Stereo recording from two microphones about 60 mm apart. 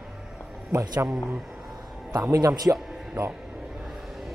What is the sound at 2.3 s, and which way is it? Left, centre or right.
Speech, right.